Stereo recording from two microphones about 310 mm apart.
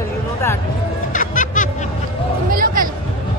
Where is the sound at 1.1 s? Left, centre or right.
Left.